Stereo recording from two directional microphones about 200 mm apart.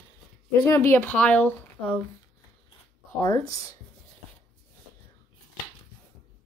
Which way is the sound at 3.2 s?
15° left (ahead or behind).